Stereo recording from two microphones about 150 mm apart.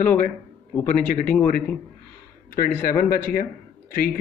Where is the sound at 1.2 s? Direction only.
10° left (ahead or behind).